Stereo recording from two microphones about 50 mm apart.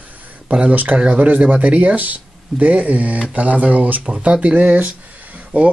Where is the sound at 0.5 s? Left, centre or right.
Right.